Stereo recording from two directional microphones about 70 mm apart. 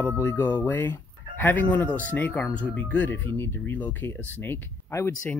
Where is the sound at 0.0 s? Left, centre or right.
Left.